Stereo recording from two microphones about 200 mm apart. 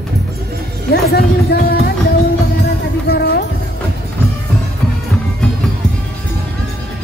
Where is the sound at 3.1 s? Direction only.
55° left (ahead or behind).